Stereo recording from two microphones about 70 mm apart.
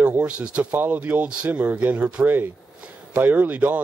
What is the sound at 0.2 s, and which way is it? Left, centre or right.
Speech, centre.